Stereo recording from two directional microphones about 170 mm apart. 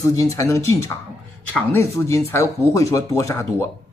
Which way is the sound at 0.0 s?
20° left (ahead or behind).